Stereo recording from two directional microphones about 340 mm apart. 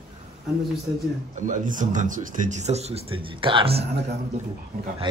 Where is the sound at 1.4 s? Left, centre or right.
Right.